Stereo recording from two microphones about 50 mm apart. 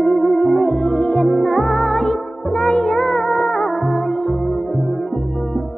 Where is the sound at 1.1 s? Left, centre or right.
Centre.